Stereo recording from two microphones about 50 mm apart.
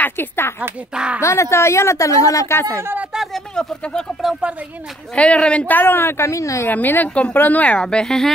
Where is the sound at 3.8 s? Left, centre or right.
Centre.